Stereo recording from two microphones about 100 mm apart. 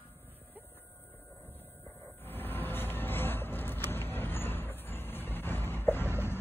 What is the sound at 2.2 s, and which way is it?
Vehicle, 20° left (ahead or behind).